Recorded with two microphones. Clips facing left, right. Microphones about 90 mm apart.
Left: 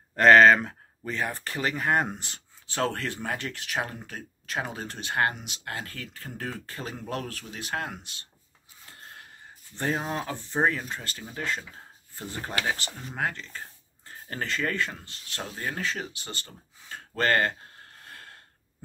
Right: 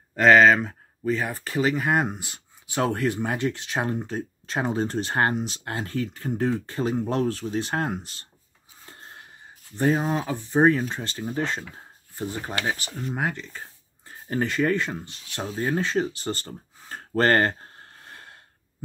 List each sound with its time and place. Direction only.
0.1 s speech: 5° right (ahead or behind); by 8.3 s 35° right (ahead or behind)
8.8 s a sound: 30° right (ahead or behind)
9.8 s speech: 10° right (ahead or behind)